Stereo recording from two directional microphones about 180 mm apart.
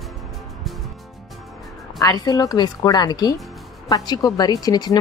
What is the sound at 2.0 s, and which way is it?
Speech, 20° left (ahead or behind).